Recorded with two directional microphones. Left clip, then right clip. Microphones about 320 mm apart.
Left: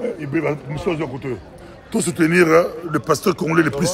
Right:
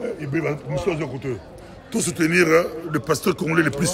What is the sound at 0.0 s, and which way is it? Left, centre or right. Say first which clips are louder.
Speech: left 3 dB; centre.